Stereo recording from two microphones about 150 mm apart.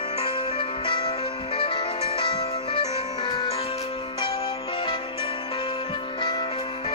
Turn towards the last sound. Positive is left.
turn(degrees=35)  # may be behind; listen again after turning